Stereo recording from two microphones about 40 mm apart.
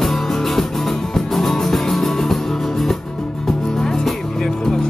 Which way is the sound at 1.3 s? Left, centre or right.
Centre.